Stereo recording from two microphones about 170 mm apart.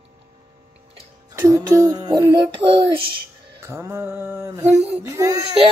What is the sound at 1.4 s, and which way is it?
Music, 20° right (ahead or behind).